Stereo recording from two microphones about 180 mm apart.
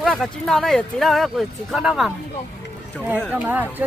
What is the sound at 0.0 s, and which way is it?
Speech, centre (ahead or behind).